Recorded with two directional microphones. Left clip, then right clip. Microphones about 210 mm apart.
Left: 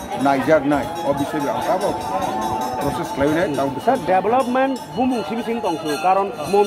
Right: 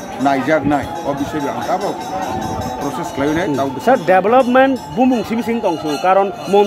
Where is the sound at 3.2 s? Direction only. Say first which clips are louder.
Right 2 dB; centre (ahead or behind).